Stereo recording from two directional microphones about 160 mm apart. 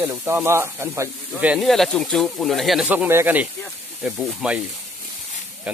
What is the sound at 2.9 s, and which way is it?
Speech, 15° right (ahead or behind).